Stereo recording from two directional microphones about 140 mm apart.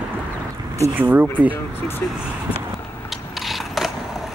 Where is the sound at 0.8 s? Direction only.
15° right (ahead or behind).